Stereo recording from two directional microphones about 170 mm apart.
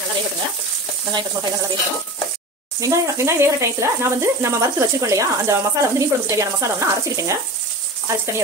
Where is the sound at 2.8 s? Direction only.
20° right (ahead or behind).